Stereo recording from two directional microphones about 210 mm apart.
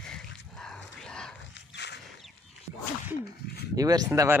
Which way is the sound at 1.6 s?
55° left (ahead or behind).